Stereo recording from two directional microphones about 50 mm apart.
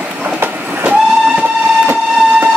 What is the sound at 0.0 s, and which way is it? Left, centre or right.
Train, right.